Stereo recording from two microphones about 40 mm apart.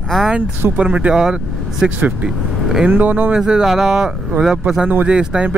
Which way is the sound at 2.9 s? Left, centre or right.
Right.